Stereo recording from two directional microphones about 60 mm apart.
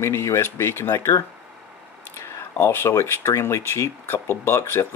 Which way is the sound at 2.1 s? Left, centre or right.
Left.